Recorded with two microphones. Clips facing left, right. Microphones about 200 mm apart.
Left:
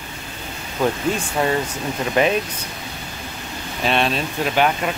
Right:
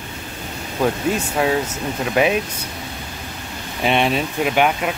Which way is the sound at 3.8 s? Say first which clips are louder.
Right 2 dB; 15° right (ahead or behind).